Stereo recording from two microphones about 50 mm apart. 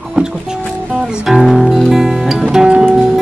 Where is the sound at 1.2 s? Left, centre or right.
Centre.